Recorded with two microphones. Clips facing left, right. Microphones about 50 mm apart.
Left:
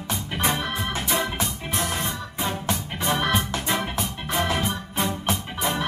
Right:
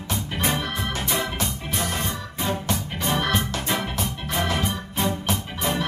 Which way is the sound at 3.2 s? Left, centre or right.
Centre.